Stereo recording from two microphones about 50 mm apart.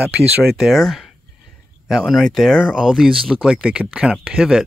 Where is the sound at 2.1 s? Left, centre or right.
Centre.